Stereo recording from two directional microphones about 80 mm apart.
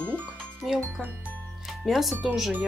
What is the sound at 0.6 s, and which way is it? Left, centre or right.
Speech, centre.